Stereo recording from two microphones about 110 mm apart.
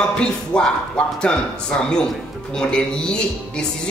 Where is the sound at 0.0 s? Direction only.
10° left (ahead or behind).